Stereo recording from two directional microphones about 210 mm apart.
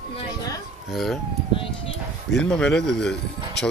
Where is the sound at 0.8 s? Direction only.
Centre (ahead or behind).